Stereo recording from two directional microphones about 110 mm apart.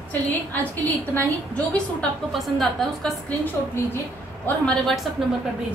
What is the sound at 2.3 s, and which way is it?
A woman's voice, centre (ahead or behind).